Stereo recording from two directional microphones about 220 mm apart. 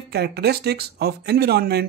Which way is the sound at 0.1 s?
50° right (ahead or behind).